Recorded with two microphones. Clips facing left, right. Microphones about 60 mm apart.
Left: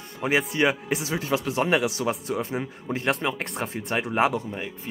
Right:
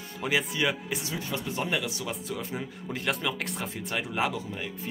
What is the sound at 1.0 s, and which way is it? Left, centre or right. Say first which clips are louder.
Speech: left 7 dB; left.